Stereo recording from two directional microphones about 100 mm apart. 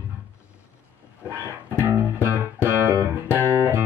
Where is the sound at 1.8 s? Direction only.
20° right (ahead or behind).